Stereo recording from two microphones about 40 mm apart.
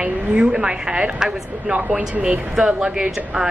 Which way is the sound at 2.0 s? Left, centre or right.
Right.